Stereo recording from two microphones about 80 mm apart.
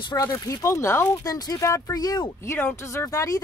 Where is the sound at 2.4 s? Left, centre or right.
Left.